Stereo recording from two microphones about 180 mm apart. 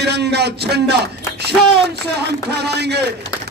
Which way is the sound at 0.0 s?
65° right (ahead or behind).